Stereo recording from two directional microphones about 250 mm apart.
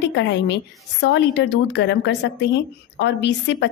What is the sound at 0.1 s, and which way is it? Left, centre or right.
A woman's voice, left.